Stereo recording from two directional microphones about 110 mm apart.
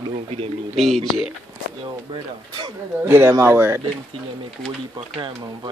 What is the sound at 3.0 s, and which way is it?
Speech, 20° right (ahead or behind).